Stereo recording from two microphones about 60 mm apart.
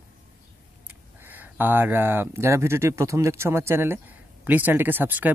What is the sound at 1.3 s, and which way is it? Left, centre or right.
Speech, right.